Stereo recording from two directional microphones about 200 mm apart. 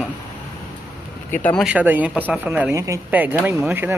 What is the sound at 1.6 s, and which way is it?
Speech, 5° right (ahead or behind).